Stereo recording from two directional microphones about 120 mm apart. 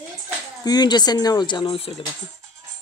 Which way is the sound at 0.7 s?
35° left (ahead or behind).